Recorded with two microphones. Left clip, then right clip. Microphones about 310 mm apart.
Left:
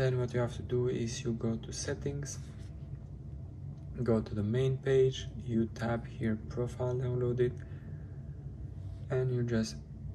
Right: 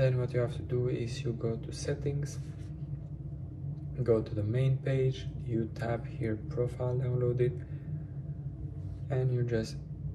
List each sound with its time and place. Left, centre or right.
0.0 s speech: left
4.0 s speech: left
9.1 s speech: left